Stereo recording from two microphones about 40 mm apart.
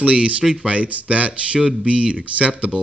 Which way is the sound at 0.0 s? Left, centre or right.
Right.